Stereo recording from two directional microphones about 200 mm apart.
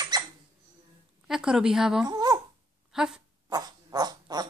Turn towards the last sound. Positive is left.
turn(degrees=-20)  # may be behind; listen again after turning